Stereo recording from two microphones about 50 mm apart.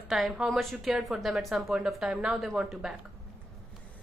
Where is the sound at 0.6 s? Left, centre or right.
Centre.